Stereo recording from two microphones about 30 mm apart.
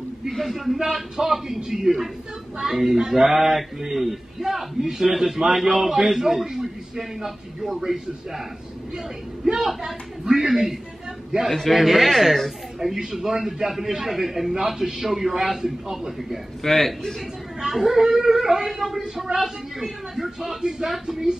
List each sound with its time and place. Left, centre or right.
0.3 s speech: centre
0.7 s a man's voice: centre
2.6 s a man's voice: right; by 7.8 s centre
9.4 s a man's voice: right
11.7 s a man's voice: centre
16.6 s a man's voice: centre
17.7 s a man's voice: centre
18.9 s a man's voice: centre